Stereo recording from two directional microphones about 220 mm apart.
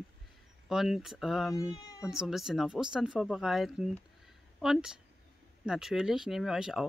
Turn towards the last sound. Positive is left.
turn(degrees=0)  # may be behind; listen again after turning